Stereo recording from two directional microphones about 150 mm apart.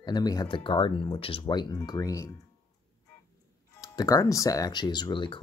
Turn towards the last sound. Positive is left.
turn(degrees=35)  # may be behind; listen again after turning